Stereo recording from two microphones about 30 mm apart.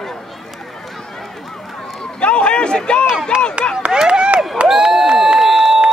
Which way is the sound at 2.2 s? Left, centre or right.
Left.